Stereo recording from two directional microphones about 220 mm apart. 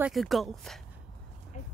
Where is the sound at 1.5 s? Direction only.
30° left (ahead or behind).